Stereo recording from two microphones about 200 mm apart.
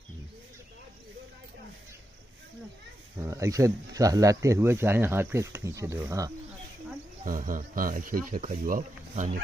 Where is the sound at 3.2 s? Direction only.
15° right (ahead or behind).